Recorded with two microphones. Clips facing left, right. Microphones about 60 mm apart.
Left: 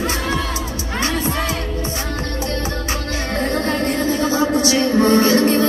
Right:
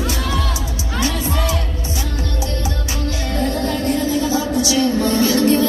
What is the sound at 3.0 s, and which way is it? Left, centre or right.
Music, left.